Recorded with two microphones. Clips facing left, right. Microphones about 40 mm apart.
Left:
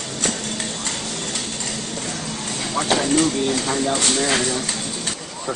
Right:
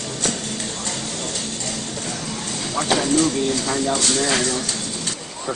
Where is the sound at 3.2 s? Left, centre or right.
Centre.